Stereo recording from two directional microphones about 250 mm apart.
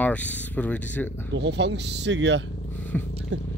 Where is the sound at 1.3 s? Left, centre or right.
Right.